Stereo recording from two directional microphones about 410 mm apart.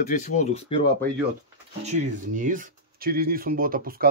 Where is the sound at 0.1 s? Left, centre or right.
Centre.